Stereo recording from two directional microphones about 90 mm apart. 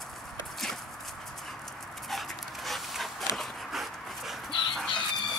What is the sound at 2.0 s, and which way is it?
Dog, centre (ahead or behind).